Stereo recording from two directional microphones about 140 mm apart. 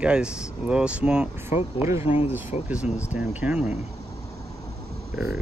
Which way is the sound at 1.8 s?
20° right (ahead or behind).